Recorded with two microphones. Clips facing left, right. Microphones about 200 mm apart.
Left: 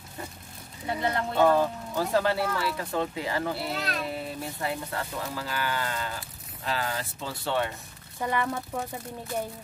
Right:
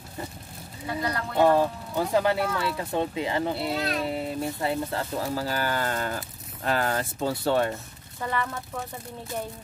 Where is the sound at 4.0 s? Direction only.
25° right (ahead or behind); by 7.7 s 45° right (ahead or behind).